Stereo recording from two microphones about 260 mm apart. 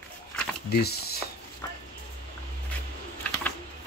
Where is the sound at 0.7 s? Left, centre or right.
Left.